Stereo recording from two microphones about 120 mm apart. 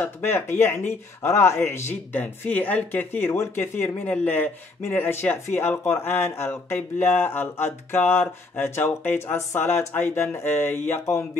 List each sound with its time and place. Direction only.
0.0 s speech: 20° left (ahead or behind)